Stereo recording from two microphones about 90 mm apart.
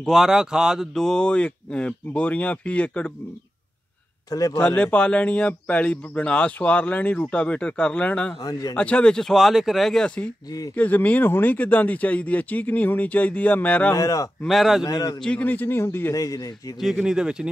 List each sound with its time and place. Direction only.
0.0 s speech: centre (ahead or behind)
0.9 s speech: 10° left (ahead or behind)
4.3 s a man's voice: 45° left (ahead or behind)
4.6 s speech: 10° left (ahead or behind)
8.4 s a man's voice: 45° left (ahead or behind)
8.7 s speech: 15° left (ahead or behind)
13.9 s speech: 40° left (ahead or behind)
14.5 s speech: centre (ahead or behind)
14.8 s a man's voice: 45° left (ahead or behind)
15.2 s speech: 15° left (ahead or behind)
16.2 s speech: 40° left (ahead or behind)
16.8 s speech: 5° right (ahead or behind)